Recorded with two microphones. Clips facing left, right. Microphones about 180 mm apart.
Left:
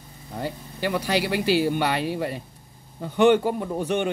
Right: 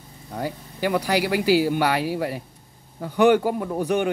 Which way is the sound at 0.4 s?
15° right (ahead or behind).